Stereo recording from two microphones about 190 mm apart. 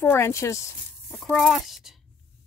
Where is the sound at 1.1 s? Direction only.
Centre (ahead or behind).